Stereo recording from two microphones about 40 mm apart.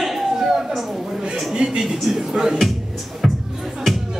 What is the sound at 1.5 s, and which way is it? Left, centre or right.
Speech, centre.